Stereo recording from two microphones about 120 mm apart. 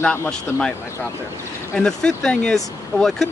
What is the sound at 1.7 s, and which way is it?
Speech, 5° left (ahead or behind).